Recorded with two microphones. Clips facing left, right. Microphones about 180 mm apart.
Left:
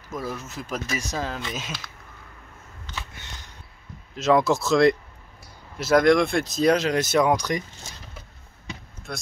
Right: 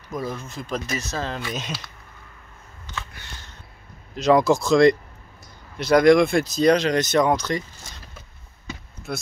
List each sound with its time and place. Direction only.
0.1 s speech: 5° left (ahead or behind)
3.1 s a sound: 20° left (ahead or behind)
4.1 s speech: centre (ahead or behind)
9.1 s speech: 5° right (ahead or behind)